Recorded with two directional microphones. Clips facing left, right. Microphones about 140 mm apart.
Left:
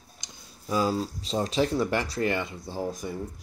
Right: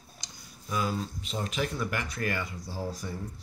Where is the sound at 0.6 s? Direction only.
35° left (ahead or behind).